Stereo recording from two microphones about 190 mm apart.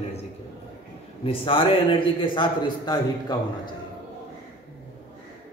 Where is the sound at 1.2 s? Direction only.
30° left (ahead or behind).